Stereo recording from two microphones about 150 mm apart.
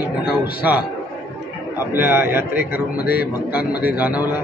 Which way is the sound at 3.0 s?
90° left.